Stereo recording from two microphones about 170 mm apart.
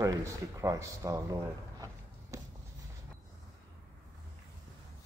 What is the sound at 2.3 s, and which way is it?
Walk, 20° right (ahead or behind).